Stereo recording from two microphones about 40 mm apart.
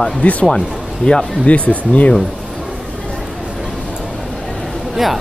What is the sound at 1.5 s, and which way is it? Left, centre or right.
Speech, left.